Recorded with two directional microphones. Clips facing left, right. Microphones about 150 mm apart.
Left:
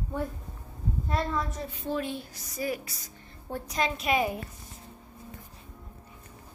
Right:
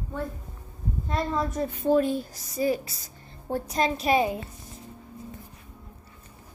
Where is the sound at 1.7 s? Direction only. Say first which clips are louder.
Right 12 dB; 50° right (ahead or behind).